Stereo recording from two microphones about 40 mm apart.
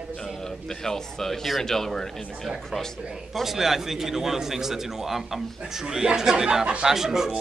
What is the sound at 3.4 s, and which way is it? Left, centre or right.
A man's voice, centre.